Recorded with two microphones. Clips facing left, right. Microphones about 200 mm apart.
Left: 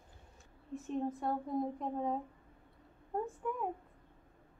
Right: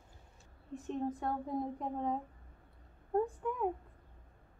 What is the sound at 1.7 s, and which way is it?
Speech, centre (ahead or behind).